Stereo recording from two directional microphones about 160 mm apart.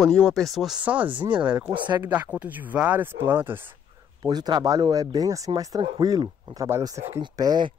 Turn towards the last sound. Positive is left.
turn(degrees=-25)  # may be behind; listen again after turning